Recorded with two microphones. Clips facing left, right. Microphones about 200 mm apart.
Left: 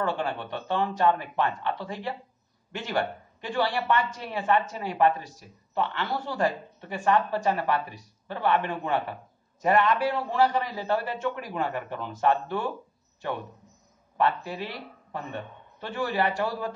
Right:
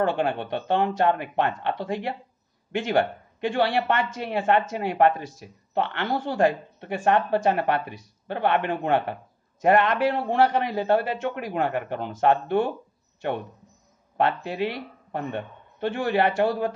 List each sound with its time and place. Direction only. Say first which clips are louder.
0.0 s a man's voice: right 5 dB; 55° right (ahead or behind)
14.1 s a man's voice: right 2 dB; 60° right (ahead or behind)